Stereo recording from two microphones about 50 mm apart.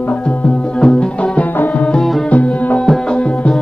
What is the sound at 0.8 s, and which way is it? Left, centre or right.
Music, centre.